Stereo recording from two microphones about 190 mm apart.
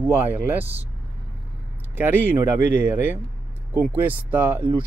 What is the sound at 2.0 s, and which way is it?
Speech, 10° right (ahead or behind).